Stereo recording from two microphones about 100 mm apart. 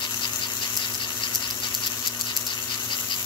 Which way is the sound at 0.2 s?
50° left (ahead or behind).